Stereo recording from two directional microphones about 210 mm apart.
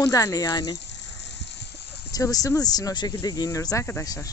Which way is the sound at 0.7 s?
55° left (ahead or behind).